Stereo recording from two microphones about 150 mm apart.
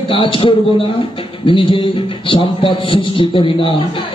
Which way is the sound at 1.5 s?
35° left (ahead or behind).